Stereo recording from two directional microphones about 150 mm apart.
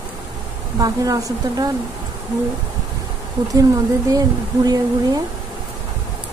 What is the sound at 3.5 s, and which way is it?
Speech, 25° right (ahead or behind).